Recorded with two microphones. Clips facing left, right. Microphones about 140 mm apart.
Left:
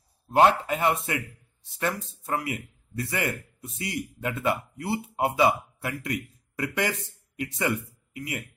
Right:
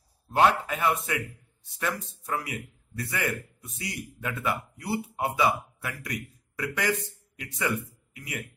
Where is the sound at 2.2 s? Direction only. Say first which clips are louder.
Left 3 dB; 25° left (ahead or behind).